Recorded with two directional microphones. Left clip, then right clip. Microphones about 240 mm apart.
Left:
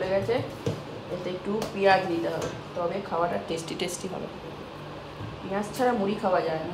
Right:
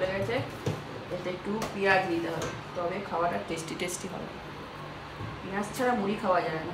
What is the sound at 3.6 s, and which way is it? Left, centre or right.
Speech, centre.